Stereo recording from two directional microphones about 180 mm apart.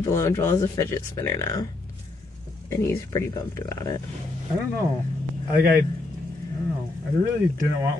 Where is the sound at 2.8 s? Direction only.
15° left (ahead or behind).